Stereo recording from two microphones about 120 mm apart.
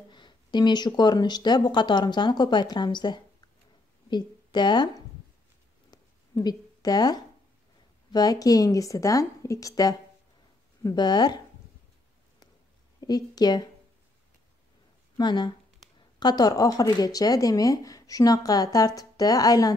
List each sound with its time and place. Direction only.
0.1 s a woman's voice: 40° left (ahead or behind)
5.9 s a sound: 35° left (ahead or behind)
8.1 s speech: 35° left (ahead or behind)
13.0 s speech: 35° left (ahead or behind)
15.1 s speech: 35° left (ahead or behind)